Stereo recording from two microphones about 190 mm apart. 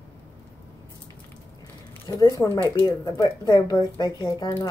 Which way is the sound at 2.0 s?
20° left (ahead or behind).